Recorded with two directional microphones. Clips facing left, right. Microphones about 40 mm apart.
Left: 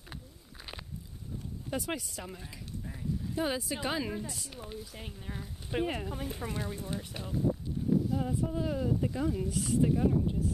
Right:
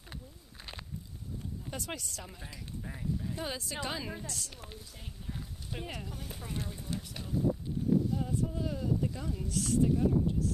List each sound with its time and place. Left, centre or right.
1.7 s speech: centre
2.4 s a sound: centre
3.3 s speech: centre
4.9 s speech: left
8.1 s speech: centre